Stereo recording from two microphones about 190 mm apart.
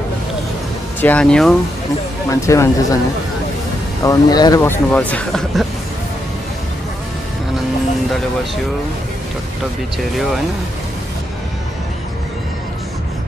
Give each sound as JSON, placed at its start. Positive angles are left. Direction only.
{"t": 1.0, "sound": "speech", "side_deg": 5}
{"t": 2.2, "sound": "speech", "side_deg": 15}
{"t": 4.0, "sound": "speech", "side_deg": 20}
{"t": 10.1, "sound": "speech", "side_deg": 0}